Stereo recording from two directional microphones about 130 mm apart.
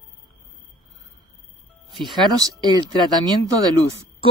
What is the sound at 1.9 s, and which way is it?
Speech, centre (ahead or behind).